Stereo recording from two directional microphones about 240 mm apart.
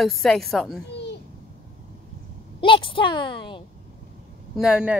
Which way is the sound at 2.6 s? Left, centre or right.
Left.